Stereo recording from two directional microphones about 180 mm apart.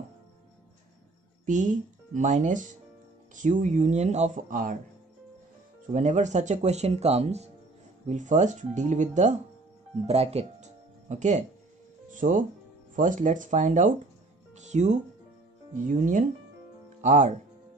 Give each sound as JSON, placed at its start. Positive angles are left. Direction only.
{"t": 1.4, "sound": "speech", "side_deg": -45}
{"t": 5.9, "sound": "speech", "side_deg": -40}